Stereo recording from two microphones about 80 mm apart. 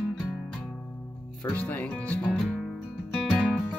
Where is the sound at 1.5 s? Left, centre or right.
Left.